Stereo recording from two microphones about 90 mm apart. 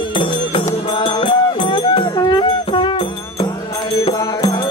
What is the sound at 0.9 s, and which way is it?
Music, 70° left (ahead or behind).